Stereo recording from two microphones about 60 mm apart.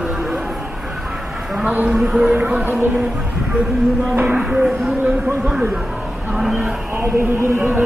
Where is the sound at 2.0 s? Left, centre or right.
Centre.